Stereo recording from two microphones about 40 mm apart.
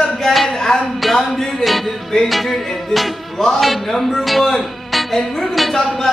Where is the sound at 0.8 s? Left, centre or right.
Centre.